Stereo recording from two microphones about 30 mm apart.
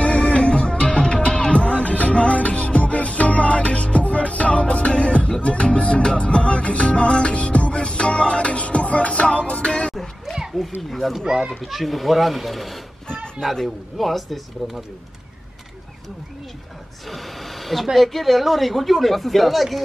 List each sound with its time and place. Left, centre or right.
0.0 s music: left
1.6 s music: left
10.9 s speech: centre
13.9 s speech: centre
17.1 s speech: centre